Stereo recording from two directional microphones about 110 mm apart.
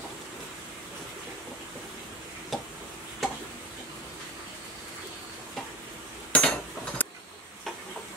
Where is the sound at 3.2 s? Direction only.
Centre (ahead or behind).